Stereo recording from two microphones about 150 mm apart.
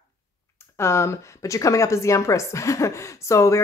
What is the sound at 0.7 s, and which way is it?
Speech, 15° left (ahead or behind).